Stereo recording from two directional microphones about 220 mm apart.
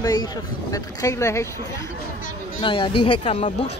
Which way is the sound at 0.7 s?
15° left (ahead or behind).